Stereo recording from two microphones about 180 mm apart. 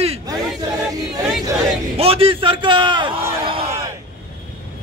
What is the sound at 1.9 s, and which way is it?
A man's voice, 30° right (ahead or behind).